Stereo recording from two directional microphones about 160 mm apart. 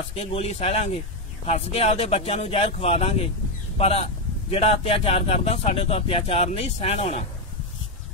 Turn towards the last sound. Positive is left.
turn(degrees=40)  # may be behind; listen again after turning